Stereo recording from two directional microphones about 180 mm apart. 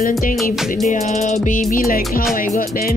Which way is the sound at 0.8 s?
40° left (ahead or behind).